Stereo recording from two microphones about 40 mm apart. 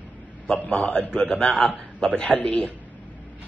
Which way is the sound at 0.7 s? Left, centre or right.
Left.